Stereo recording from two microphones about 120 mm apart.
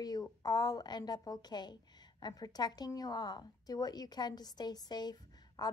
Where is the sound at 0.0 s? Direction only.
35° left (ahead or behind).